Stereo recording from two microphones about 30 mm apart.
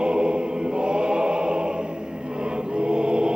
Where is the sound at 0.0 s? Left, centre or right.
Right.